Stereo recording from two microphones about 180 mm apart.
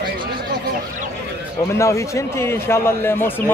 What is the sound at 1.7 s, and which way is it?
A man's voice, 15° left (ahead or behind).